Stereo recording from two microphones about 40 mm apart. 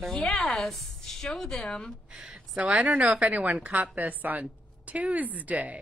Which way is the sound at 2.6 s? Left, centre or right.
Right.